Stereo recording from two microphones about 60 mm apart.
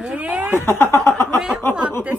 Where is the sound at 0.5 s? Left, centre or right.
Left.